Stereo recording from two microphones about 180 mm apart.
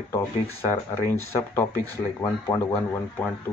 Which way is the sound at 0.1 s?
15° left (ahead or behind).